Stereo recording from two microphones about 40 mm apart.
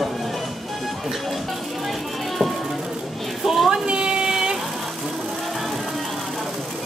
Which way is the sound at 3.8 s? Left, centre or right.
Right.